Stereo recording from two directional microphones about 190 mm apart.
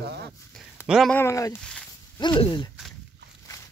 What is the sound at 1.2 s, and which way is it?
Speech, 15° left (ahead or behind).